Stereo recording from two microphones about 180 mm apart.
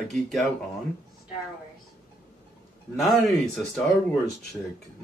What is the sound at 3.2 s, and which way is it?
Speech, centre (ahead or behind).